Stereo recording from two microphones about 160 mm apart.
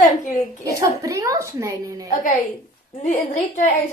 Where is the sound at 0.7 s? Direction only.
20° right (ahead or behind).